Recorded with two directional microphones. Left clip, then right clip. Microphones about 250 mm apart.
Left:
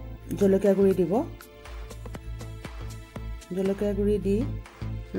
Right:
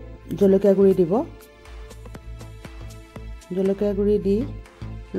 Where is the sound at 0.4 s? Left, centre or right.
Centre.